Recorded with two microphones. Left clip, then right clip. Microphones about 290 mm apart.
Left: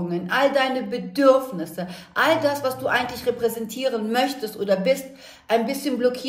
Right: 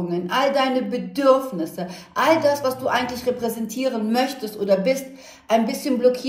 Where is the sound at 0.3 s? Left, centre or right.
Left.